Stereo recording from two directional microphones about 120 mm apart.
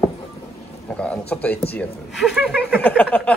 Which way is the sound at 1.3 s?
10° left (ahead or behind).